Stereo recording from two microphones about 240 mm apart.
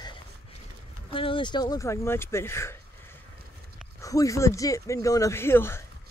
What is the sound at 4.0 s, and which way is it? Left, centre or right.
Speech, centre.